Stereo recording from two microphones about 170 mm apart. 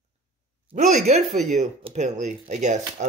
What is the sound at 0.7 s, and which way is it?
Speech, 40° right (ahead or behind).